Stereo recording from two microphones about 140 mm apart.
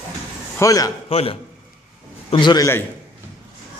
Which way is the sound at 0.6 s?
25° left (ahead or behind).